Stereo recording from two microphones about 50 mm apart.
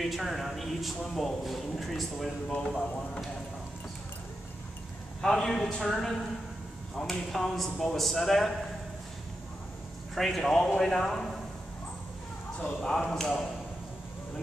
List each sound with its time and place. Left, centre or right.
0.0 s speech: centre
5.2 s speech: centre
10.1 s a man's voice: centre
12.6 s speech: centre